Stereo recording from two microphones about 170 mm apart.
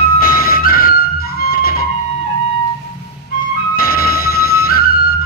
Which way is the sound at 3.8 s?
60° left (ahead or behind).